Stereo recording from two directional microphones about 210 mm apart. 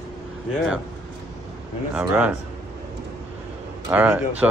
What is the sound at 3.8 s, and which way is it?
Speech, 10° right (ahead or behind).